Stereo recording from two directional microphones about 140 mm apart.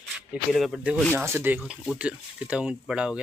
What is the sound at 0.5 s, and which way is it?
Speech, centre (ahead or behind).